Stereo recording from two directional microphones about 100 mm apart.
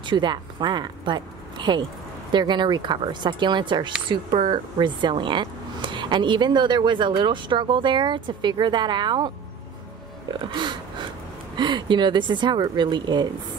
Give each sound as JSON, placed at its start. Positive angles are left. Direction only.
{"t": 0.0, "sound": "speech", "side_deg": -50}
{"t": 10.4, "sound": "speech", "side_deg": -50}